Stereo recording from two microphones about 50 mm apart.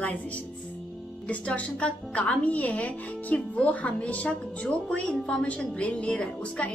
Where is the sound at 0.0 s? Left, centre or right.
Left.